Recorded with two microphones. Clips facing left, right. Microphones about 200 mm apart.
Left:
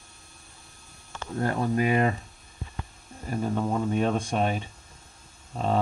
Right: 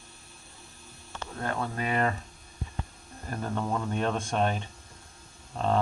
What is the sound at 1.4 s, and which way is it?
Speech, 15° left (ahead or behind).